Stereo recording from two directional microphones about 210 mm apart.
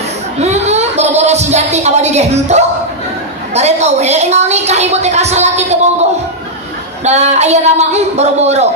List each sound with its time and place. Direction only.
0.4 s a woman's voice: 30° right (ahead or behind)
7.1 s a woman's voice: 30° right (ahead or behind)